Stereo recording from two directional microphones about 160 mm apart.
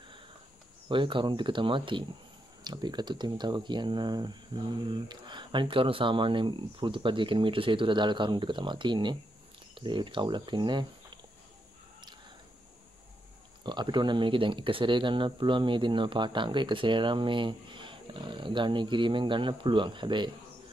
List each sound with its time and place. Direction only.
0.8 s speech: 30° right (ahead or behind)
13.7 s speech: 30° right (ahead or behind)